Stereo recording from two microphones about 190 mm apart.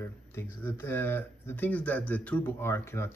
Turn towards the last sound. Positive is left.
turn(degrees=15)  # may be behind; listen again after turning